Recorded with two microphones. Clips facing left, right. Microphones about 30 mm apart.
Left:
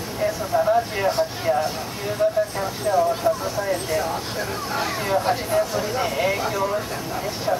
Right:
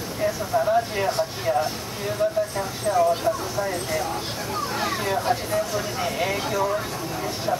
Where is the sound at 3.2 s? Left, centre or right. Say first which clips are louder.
Left 2 dB; centre.